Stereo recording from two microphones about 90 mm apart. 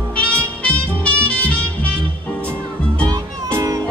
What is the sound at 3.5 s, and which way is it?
Music, 40° right (ahead or behind).